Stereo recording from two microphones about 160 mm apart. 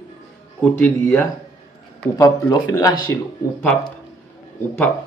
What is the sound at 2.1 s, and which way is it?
Speech, 20° left (ahead or behind).